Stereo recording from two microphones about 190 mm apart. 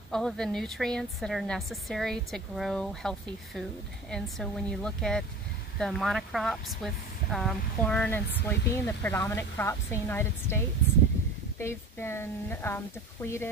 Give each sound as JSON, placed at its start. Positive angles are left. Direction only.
{"t": 0.1, "sound": "a woman's voice", "side_deg": 0}